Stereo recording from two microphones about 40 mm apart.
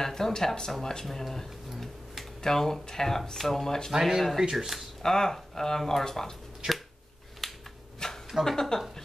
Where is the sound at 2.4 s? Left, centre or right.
Centre.